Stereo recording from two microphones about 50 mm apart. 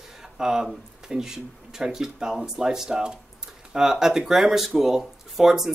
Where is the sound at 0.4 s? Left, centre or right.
Centre.